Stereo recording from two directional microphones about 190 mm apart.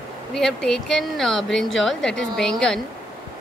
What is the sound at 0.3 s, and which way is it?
A woman's voice, 5° left (ahead or behind).